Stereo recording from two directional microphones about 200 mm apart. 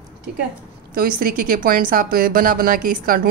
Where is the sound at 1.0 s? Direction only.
45° right (ahead or behind).